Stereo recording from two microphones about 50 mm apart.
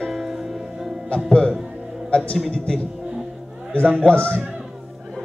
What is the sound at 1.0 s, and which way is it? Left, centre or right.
Music, left.